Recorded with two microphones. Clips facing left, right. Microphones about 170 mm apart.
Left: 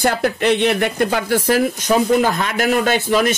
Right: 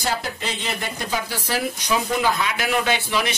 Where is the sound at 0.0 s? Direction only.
60° left (ahead or behind).